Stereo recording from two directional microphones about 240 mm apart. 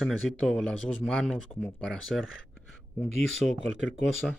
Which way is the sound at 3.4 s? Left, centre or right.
Left.